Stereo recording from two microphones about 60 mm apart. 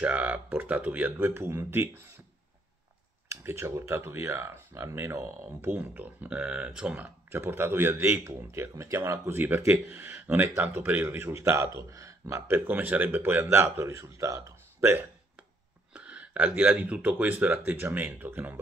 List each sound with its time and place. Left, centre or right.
0.0 s speech: right
1.1 s speech: right
3.3 s speech: right
5.7 s a man's voice: right
6.3 s speech: centre
7.0 s a man's voice: right
12.4 s a man's voice: right
15.9 s a man's voice: right